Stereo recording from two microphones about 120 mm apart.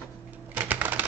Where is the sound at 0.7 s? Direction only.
15° right (ahead or behind).